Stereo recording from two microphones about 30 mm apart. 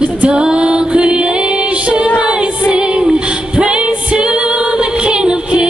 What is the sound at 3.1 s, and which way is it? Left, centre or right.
Female singing, right.